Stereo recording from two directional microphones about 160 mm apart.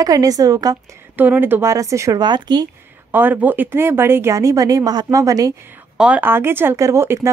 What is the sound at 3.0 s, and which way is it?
Speech, 10° right (ahead or behind).